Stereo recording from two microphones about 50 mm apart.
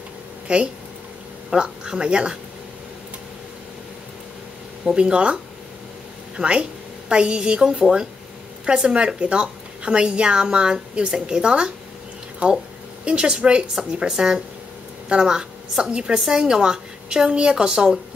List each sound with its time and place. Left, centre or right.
0.5 s a woman's voice: right
4.9 s a woman's voice: right
7.8 s a woman's voice: centre
8.6 s a woman's voice: centre